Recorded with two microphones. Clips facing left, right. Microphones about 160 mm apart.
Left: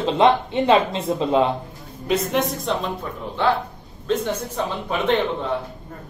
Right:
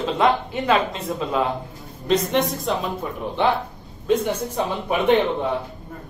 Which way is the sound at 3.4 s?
15° right (ahead or behind).